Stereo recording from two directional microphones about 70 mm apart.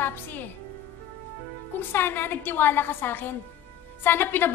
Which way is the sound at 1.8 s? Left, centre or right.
Left.